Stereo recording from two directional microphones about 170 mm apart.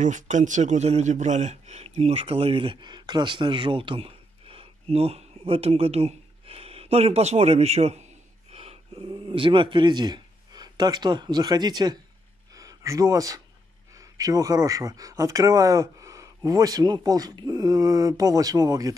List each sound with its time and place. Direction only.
0.0 s speech: 45° right (ahead or behind); by 12.0 s 25° right (ahead or behind)
12.5 s a sound: 20° right (ahead or behind)
13.9 s speech: 20° right (ahead or behind)